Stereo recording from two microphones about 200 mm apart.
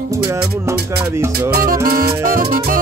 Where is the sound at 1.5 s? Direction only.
45° right (ahead or behind).